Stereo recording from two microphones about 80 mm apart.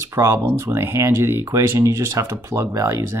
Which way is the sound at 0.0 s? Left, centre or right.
Right.